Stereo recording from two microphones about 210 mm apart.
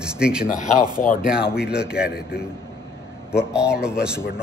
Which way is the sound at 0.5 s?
35° left (ahead or behind).